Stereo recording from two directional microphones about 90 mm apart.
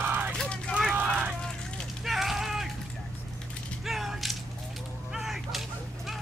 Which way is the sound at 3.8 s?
Centre (ahead or behind).